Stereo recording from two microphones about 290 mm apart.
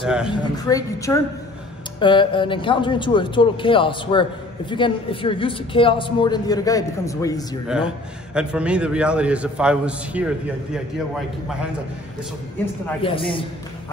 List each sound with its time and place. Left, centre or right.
0.3 s speech: centre
7.6 s a man's voice: centre
13.0 s speech: centre